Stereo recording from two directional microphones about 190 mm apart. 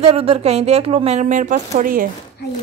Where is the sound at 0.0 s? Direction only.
30° right (ahead or behind).